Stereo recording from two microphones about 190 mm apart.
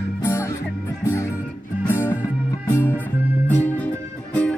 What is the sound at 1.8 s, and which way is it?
Music, 10° left (ahead or behind).